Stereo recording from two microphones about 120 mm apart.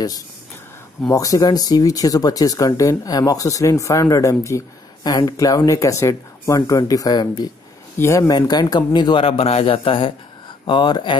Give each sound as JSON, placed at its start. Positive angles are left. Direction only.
{"t": 1.1, "sound": "speech", "side_deg": 30}